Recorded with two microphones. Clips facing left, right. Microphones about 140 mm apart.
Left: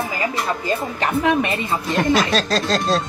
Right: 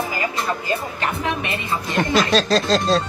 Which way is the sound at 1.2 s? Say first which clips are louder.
Left 6 dB; 40° left (ahead or behind).